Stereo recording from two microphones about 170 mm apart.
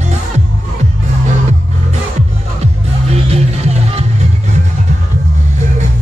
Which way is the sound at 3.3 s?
40° right (ahead or behind).